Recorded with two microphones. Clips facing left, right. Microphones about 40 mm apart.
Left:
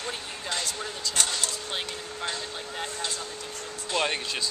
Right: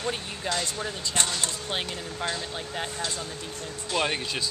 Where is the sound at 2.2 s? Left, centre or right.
Centre.